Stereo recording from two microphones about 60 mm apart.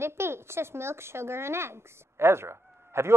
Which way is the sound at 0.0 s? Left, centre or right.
Right.